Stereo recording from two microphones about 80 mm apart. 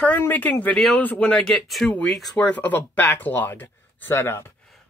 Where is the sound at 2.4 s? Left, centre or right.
Centre.